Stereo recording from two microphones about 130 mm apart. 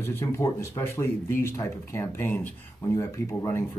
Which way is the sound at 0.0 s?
20° left (ahead or behind).